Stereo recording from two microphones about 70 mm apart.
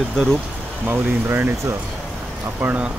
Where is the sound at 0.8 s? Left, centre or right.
Right.